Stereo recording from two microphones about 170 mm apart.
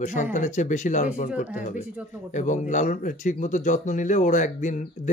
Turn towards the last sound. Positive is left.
turn(degrees=45)  # may be behind; listen again after turning